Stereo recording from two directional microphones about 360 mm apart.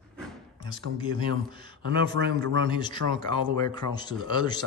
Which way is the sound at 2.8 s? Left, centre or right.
Centre.